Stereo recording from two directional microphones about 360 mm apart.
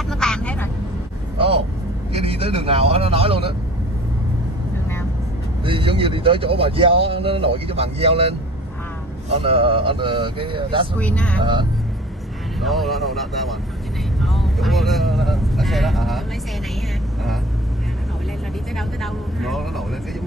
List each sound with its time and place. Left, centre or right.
0.1 s vehicle: centre
2.1 s speech: centre
5.6 s speech: centre
11.0 s speech: centre
12.5 s speech: centre
14.2 s vehicle: centre